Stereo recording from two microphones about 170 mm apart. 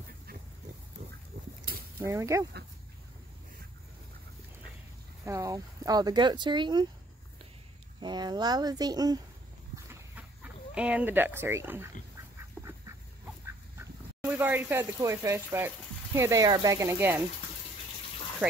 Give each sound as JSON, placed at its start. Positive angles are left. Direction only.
{"t": 1.3, "sound": "pig", "side_deg": -45}
{"t": 2.0, "sound": "speech", "side_deg": -15}
{"t": 5.2, "sound": "speech", "side_deg": -20}
{"t": 8.0, "sound": "speech", "side_deg": -25}
{"t": 9.8, "sound": "chicken", "side_deg": -5}
{"t": 12.6, "sound": "duck", "side_deg": -10}
{"t": 13.7, "sound": "speech", "side_deg": -10}
{"t": 18.4, "sound": "speech", "side_deg": -10}